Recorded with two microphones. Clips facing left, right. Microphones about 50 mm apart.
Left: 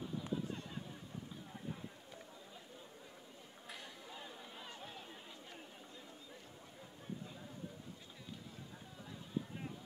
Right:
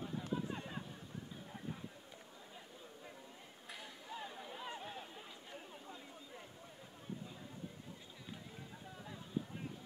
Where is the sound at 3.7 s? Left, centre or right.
Centre.